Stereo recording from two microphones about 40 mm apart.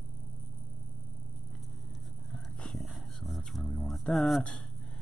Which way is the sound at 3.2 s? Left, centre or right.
Centre.